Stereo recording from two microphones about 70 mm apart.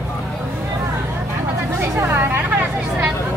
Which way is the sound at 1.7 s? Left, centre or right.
Right.